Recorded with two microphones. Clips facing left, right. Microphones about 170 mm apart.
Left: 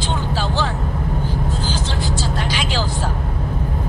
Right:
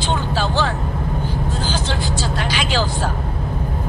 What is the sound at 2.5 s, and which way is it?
Vehicle, 70° right (ahead or behind).